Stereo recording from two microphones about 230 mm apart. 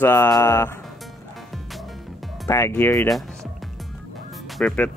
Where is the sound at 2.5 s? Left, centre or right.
Centre.